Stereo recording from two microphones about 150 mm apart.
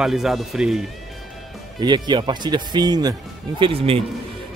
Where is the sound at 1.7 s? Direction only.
30° right (ahead or behind).